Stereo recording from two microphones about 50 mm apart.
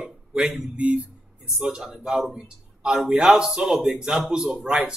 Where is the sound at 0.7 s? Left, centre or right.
Right.